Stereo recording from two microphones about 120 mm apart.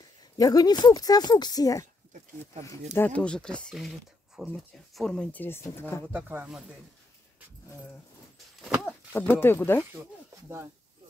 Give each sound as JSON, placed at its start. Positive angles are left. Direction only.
{"t": 0.4, "sound": "speech", "side_deg": 30}
{"t": 3.1, "sound": "speech", "side_deg": 10}
{"t": 6.1, "sound": "speech", "side_deg": -15}
{"t": 8.5, "sound": "a sound", "side_deg": -5}
{"t": 8.8, "sound": "speech", "side_deg": 15}